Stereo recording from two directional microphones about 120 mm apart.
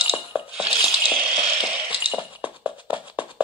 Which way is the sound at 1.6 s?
10° right (ahead or behind).